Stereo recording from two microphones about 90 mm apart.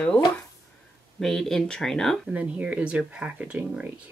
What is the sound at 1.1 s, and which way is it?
Speech, 5° left (ahead or behind).